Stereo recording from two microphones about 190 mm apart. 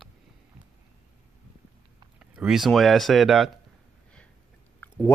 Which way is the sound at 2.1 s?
5° right (ahead or behind).